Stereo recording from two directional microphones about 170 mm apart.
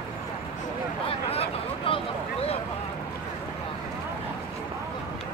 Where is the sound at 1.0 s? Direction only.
35° left (ahead or behind).